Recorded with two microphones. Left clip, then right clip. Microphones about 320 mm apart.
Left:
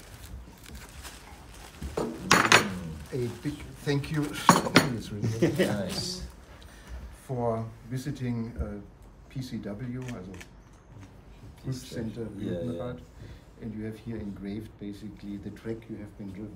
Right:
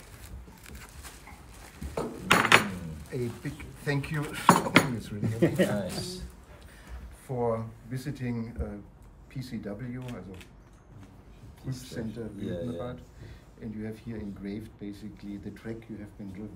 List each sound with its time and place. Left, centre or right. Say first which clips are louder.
2.0 s a sound: left 1 dB; centre
3.1 s speech: left 2 dB; centre
5.2 s speech: even; right
5.8 s speech: left 1 dB; centre
7.2 s speech: even; centre
11.6 s speech: left 1 dB; centre